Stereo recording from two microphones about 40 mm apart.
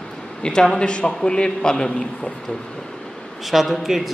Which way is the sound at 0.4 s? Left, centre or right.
Left.